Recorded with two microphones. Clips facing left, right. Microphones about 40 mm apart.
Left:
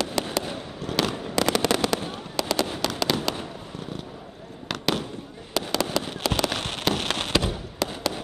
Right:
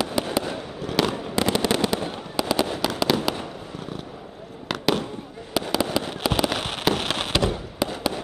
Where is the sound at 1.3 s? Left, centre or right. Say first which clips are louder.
Left 1 dB; right.